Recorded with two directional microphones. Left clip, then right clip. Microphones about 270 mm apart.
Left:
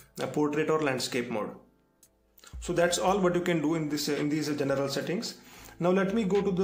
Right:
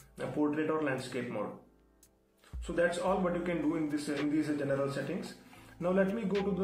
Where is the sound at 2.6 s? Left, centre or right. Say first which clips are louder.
Left 5 dB; left.